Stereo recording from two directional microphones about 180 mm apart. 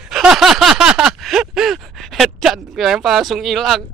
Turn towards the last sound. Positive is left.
turn(degrees=0)  # may be behind; listen again after turning